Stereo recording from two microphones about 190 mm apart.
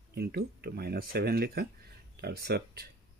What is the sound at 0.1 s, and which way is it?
Speech, 60° right (ahead or behind).